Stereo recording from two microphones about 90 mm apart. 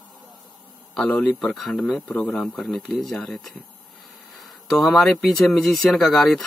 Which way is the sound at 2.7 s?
5° left (ahead or behind).